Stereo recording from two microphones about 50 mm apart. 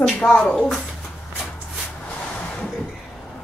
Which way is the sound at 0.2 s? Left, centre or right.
Centre.